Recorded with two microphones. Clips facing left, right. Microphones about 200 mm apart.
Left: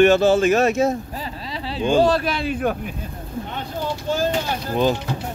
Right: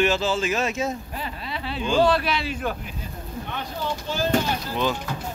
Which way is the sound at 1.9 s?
40° left (ahead or behind).